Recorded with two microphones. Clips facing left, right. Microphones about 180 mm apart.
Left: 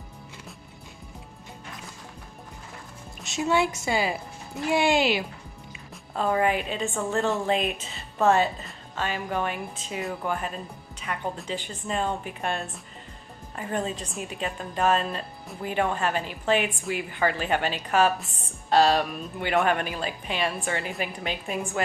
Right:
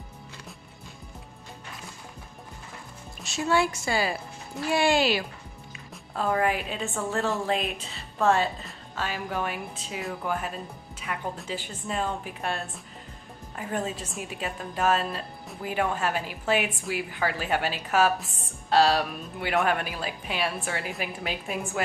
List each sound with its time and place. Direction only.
3.3 s a woman's voice: 20° left (ahead or behind)
6.1 s a woman's voice: centre (ahead or behind)